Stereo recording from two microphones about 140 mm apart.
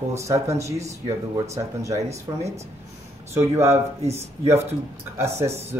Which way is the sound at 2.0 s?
50° right (ahead or behind).